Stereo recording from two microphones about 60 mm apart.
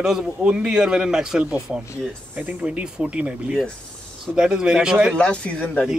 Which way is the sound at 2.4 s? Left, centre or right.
Right.